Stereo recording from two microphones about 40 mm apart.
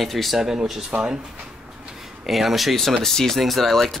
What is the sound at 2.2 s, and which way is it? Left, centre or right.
Speech, centre.